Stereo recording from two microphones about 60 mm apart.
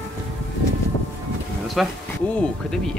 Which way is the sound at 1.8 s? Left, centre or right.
Centre.